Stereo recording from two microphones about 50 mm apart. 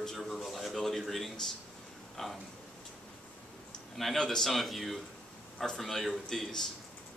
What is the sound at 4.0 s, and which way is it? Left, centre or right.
A man's voice, centre.